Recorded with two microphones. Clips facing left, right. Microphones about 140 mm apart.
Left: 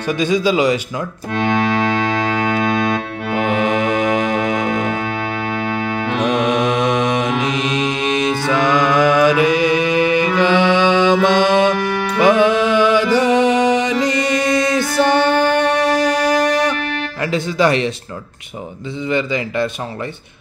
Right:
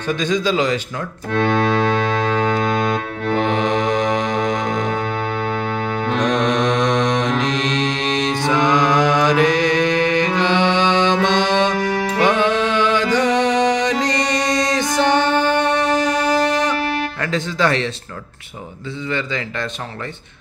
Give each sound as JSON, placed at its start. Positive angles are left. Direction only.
{"t": 0.1, "sound": "speech", "side_deg": 10}
{"t": 2.9, "sound": "music", "side_deg": 5}
{"t": 6.1, "sound": "mantra", "side_deg": 10}
{"t": 12.2, "sound": "music", "side_deg": 10}
{"t": 16.7, "sound": "music", "side_deg": -35}
{"t": 17.2, "sound": "music", "side_deg": 10}
{"t": 19.0, "sound": "speech", "side_deg": 15}